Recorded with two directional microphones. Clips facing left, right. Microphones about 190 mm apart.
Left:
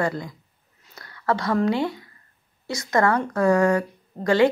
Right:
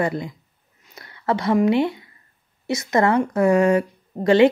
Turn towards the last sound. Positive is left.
turn(degrees=-20)  # may be behind; listen again after turning